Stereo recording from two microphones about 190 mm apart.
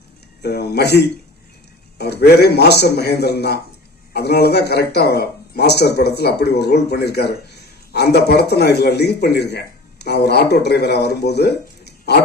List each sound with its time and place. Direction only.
0.4 s speech: 60° left (ahead or behind)